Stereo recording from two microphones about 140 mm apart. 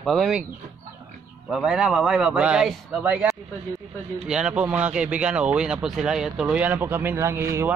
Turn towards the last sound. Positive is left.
turn(degrees=-20)  # may be behind; listen again after turning